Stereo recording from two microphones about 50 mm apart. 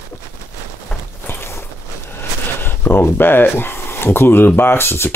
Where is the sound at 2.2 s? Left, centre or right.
Left.